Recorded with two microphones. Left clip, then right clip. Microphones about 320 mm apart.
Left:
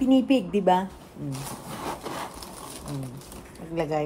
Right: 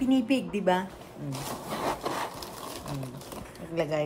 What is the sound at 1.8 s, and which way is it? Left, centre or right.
Wood, centre.